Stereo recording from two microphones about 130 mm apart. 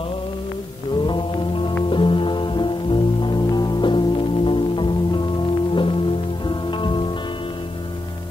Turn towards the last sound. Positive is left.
turn(degrees=40)  # may be behind; listen again after turning